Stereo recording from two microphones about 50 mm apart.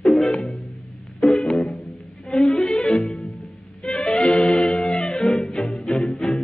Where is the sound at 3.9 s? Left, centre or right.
Centre.